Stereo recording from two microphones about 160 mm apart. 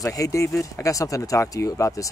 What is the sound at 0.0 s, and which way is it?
Speech, 20° left (ahead or behind).